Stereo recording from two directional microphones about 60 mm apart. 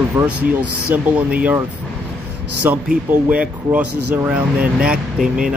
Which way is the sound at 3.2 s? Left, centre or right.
Right.